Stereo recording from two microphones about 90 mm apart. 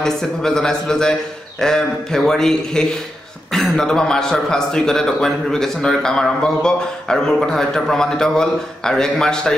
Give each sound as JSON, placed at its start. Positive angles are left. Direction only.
{"t": 0.0, "sound": "a man's voice", "side_deg": 5}